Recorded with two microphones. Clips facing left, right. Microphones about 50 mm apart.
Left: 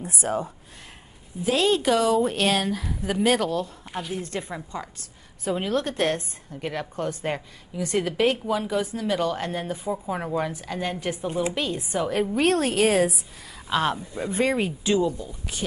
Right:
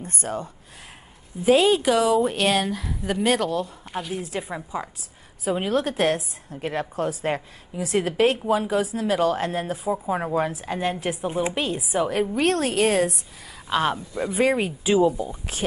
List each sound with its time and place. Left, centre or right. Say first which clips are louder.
0.0 s speech: left 3 dB; centre
1.4 s speech: right 4 dB; centre
1.8 s speech: right 1 dB; centre
7.7 s a woman's voice: right 2 dB; right